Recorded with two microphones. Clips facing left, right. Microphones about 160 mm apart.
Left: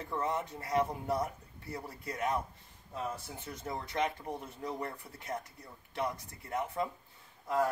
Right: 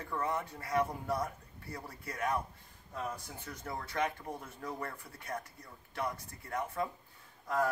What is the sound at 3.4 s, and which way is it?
Speech, 20° left (ahead or behind).